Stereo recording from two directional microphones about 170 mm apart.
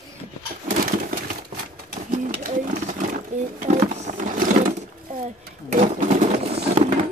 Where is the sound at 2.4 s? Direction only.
50° right (ahead or behind).